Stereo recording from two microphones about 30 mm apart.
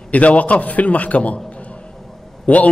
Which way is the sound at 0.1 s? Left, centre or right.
Left.